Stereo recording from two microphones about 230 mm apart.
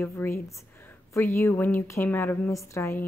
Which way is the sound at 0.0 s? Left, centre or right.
Centre.